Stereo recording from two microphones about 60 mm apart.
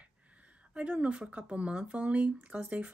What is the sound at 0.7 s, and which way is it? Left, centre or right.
Speech, right.